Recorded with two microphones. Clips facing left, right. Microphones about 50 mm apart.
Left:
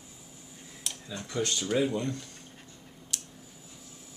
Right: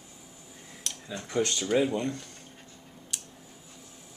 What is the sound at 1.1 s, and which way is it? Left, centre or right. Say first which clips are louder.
Speech: right 3 dB; centre.